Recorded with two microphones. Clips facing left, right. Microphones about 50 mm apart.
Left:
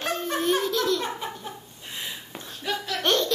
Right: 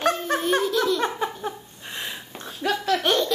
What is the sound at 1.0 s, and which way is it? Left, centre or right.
Laughter, right.